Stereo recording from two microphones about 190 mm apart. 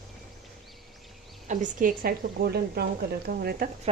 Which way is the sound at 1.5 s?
45° right (ahead or behind).